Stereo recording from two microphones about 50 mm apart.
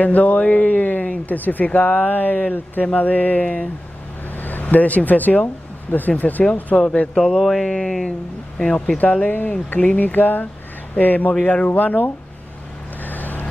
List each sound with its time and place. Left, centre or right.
0.0 s speech: left
6.7 s speech: centre
8.5 s speech: centre
8.9 s speech: left
13.0 s vehicle: left